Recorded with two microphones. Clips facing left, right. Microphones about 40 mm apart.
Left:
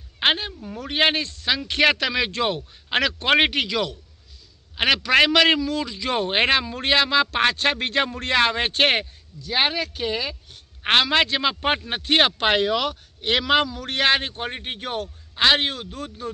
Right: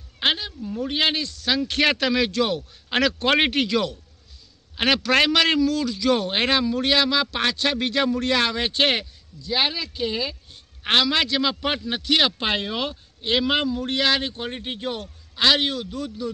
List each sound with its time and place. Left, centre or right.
0.2 s a sound: left
0.6 s a man's voice: left
1.5 s a man's voice: centre
2.3 s a man's voice: left
2.9 s a man's voice: centre
7.2 s speech: left
10.8 s a man's voice: left
12.4 s speech: left
14.0 s a man's voice: left
14.8 s speech: left
15.3 s speech: left